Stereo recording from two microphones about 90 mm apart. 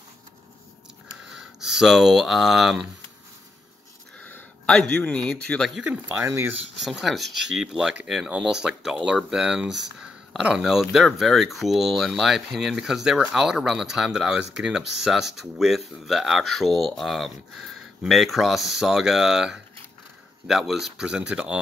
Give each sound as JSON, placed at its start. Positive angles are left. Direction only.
{"t": 1.3, "sound": "speech", "side_deg": -5}
{"t": 4.2, "sound": "a man's voice", "side_deg": 15}
{"t": 6.2, "sound": "speech", "side_deg": -30}
{"t": 6.8, "sound": "speech", "side_deg": 0}